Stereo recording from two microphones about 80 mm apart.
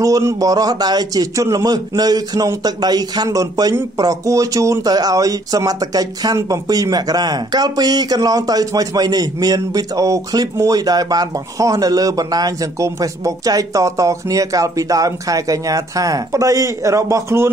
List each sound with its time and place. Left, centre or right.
0.0 s speech: right